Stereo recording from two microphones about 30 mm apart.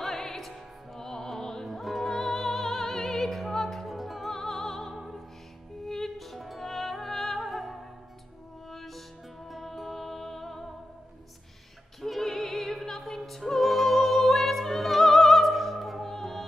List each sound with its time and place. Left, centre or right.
0.0 s music: centre
3.8 s music: centre
4.3 s music: centre
12.0 s music: centre
13.6 s opera: centre
16.1 s music: centre